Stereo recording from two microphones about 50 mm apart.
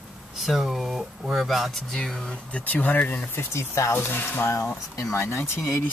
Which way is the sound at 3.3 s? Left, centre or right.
Left.